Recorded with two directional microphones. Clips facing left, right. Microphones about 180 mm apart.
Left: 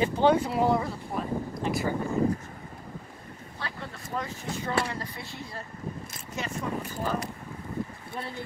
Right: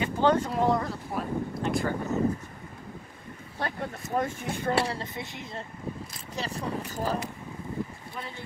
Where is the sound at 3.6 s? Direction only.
50° right (ahead or behind).